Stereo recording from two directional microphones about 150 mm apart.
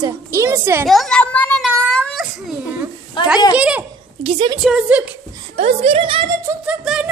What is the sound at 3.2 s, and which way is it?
Speech, 30° left (ahead or behind).